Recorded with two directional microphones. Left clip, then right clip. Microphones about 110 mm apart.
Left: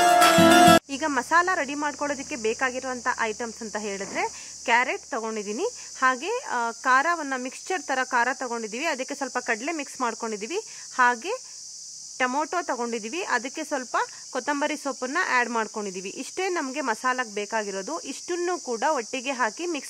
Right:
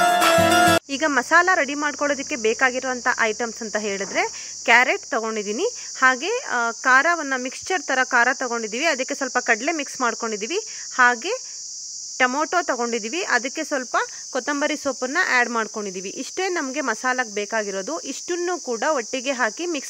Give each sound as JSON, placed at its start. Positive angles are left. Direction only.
{"t": 0.0, "sound": "music", "side_deg": 0}
{"t": 0.9, "sound": "speech", "side_deg": -30}